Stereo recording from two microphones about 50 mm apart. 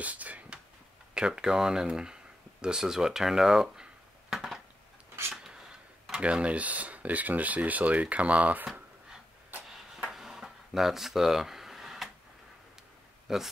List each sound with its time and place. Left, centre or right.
0.0 s speech: right
1.1 s speech: centre
4.3 s a sound: centre
6.1 s speech: right
10.0 s a sound: centre
13.3 s speech: centre